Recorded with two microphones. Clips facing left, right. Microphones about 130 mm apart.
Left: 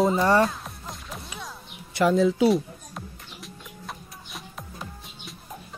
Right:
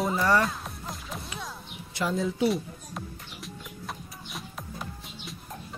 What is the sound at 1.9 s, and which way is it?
Speech, 75° left (ahead or behind).